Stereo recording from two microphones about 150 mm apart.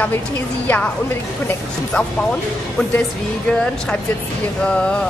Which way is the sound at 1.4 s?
5° left (ahead or behind).